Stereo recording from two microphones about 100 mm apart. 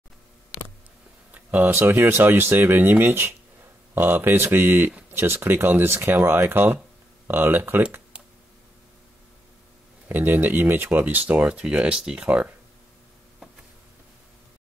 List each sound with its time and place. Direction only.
1.3 s speech: 15° right (ahead or behind)
10.0 s speech: 20° right (ahead or behind)